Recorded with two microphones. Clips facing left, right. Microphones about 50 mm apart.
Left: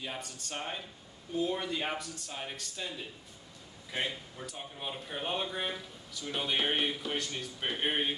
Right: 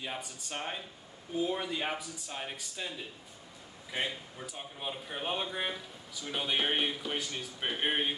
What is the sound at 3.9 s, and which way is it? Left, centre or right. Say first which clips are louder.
Speech: even; centre.